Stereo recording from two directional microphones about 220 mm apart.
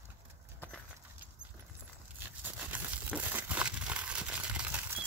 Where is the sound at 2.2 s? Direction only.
10° right (ahead or behind).